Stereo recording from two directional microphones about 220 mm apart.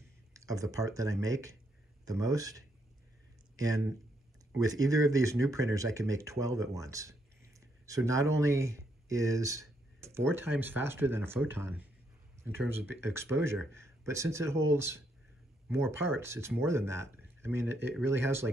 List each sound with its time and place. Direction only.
0.3 s speech: 15° right (ahead or behind)